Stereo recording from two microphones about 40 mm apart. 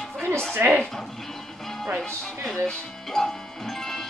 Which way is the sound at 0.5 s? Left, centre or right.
Right.